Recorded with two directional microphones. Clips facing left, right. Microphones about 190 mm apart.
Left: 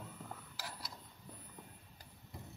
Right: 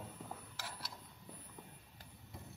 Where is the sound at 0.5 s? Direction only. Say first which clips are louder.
Left 1 dB; centre (ahead or behind).